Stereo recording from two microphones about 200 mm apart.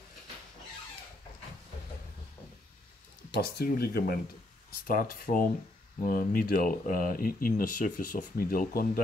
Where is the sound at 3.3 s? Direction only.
50° left (ahead or behind).